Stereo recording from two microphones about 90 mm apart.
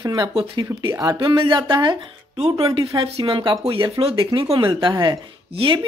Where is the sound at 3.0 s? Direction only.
70° right (ahead or behind).